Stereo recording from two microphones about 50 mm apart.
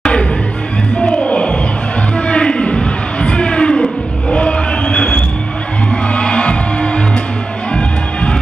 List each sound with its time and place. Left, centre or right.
0.0 s music: centre
2.1 s a sound: left
6.1 s music: left